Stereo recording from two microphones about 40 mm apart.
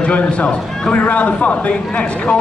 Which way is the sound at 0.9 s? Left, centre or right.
Left.